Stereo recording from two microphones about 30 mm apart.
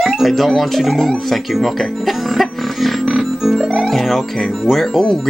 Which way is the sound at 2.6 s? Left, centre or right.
Centre.